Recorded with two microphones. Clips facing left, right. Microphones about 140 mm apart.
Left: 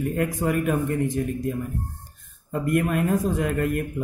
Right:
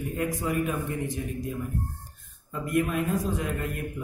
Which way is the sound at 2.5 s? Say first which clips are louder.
Left 4 dB; 50° left (ahead or behind).